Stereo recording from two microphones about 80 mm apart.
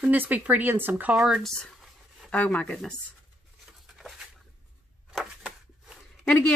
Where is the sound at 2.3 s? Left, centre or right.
Centre.